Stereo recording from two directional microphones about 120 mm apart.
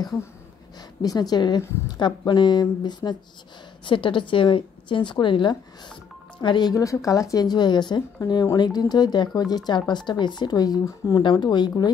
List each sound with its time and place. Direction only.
1.0 s a woman's voice: 30° left (ahead or behind)
6.7 s a woman's voice: 25° left (ahead or behind)